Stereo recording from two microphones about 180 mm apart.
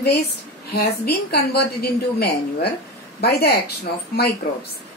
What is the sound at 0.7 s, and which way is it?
A woman's voice, 65° left (ahead or behind).